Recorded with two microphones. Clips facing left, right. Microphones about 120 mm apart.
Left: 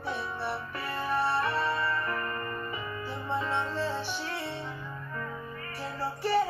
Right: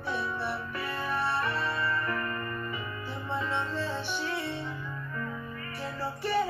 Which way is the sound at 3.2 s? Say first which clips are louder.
Left 1 dB; 30° left (ahead or behind).